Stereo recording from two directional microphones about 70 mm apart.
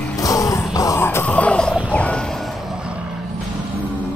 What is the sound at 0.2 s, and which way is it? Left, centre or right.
Music, left.